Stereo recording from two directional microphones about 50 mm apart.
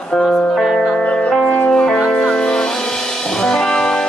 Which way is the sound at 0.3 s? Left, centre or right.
Centre.